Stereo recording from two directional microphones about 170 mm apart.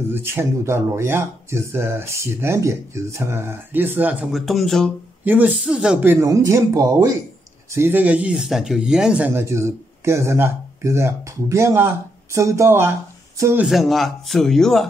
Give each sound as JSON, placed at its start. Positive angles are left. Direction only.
{"t": 0.1, "sound": "speech", "side_deg": -15}
{"t": 5.2, "sound": "speech", "side_deg": -10}
{"t": 13.7, "sound": "speech", "side_deg": 0}